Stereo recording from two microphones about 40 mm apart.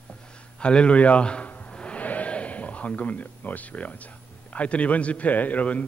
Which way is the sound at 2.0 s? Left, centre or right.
Left.